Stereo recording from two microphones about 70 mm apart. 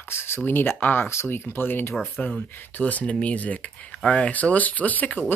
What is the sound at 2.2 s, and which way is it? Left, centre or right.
Speech, centre.